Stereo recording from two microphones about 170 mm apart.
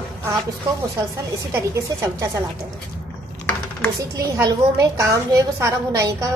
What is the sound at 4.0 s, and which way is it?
A woman's voice, 20° right (ahead or behind).